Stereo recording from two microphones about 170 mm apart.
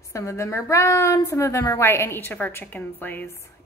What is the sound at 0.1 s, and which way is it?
A woman's voice, 15° left (ahead or behind).